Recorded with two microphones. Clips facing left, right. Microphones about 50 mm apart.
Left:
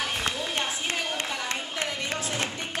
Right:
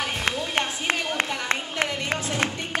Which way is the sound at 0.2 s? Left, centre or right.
Right.